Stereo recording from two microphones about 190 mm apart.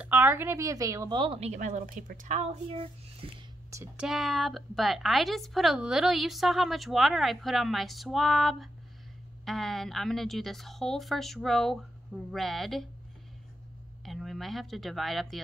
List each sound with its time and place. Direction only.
0.0 s a woman's voice: 10° right (ahead or behind); by 3.3 s 30° right (ahead or behind)
3.7 s a woman's voice: 10° right (ahead or behind)
14.0 s speech: centre (ahead or behind)